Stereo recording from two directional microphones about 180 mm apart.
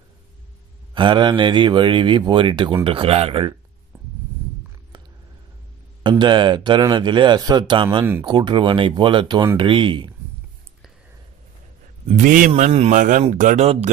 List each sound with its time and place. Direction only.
0.9 s speech: 25° right (ahead or behind)
6.0 s speech: 25° right (ahead or behind)
12.1 s a man's voice: 45° right (ahead or behind)